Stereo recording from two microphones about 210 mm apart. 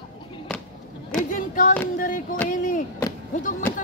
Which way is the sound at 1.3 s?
40° left (ahead or behind).